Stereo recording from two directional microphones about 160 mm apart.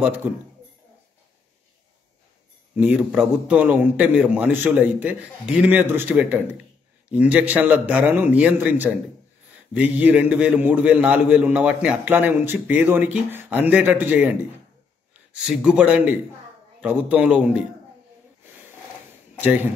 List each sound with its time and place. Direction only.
2.8 s a man's voice: 5° right (ahead or behind)
15.3 s a man's voice: 5° right (ahead or behind)
18.4 s a sound: 15° right (ahead or behind)
19.3 s speech: 10° right (ahead or behind)